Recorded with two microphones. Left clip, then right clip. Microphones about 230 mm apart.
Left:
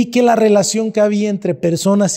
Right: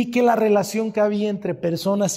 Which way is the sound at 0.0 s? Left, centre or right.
Left.